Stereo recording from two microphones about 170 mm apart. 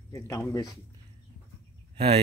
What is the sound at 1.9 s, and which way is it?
Speech, 35° right (ahead or behind).